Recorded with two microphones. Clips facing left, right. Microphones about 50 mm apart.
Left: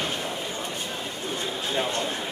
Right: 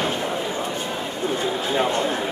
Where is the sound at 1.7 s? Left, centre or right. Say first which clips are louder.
Right 5 dB; centre.